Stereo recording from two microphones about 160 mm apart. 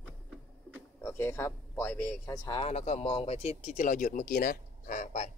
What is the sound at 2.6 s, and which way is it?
Speech, 40° left (ahead or behind).